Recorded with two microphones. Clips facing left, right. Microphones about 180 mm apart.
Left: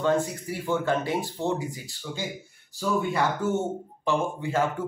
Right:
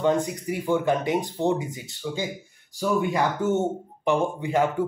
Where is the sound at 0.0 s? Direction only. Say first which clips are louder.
Right 2 dB; 15° right (ahead or behind).